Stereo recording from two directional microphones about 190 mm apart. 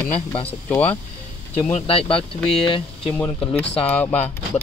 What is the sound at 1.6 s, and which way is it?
Speech, 30° left (ahead or behind).